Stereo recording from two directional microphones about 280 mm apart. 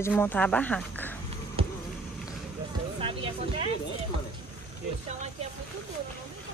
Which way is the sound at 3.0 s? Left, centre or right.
Centre.